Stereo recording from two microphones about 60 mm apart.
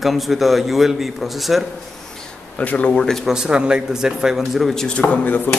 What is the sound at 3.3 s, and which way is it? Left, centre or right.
A man's voice, centre.